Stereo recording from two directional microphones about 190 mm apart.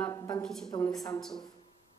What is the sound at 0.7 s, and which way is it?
Speech, 20° left (ahead or behind).